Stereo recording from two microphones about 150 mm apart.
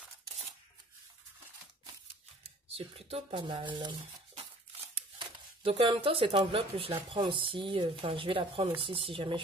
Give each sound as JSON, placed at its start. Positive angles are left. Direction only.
{"t": 2.4, "sound": "speech", "side_deg": -40}
{"t": 4.9, "sound": "speech", "side_deg": -40}